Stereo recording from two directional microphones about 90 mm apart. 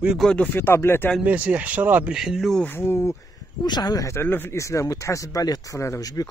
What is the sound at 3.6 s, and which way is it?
Speech, 50° left (ahead or behind).